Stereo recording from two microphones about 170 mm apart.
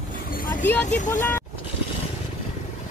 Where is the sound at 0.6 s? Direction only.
10° left (ahead or behind).